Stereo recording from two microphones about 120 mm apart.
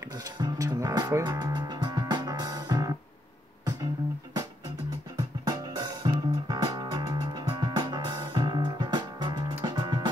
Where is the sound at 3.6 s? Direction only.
35° right (ahead or behind).